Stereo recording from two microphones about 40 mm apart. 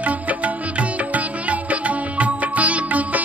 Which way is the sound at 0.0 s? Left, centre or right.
Right.